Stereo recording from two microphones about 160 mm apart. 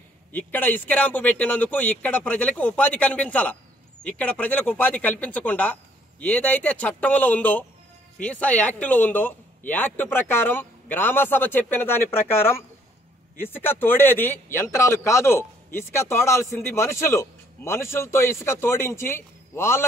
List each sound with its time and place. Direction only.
0.3 s speech: 10° left (ahead or behind)